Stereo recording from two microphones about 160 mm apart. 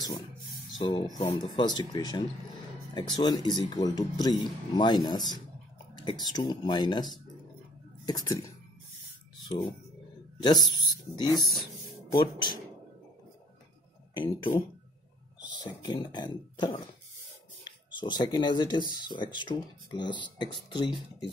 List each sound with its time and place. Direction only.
0.7 s speech: 25° left (ahead or behind)
9.5 s speech: 30° left (ahead or behind)
11.3 s speech: centre (ahead or behind)
12.1 s speech: 30° left (ahead or behind)
14.1 s speech: 30° left (ahead or behind)